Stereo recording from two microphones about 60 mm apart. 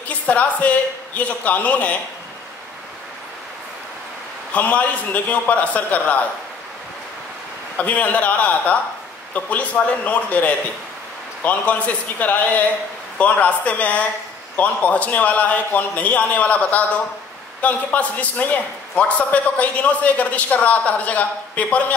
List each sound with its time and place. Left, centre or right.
0.3 s a man's voice: left
4.5 s a man's voice: left
7.7 s a man's voice: left